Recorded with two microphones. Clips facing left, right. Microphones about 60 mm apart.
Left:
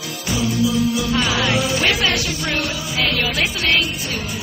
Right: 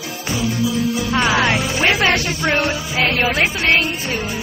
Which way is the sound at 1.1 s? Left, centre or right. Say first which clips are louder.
Right 3 dB; right.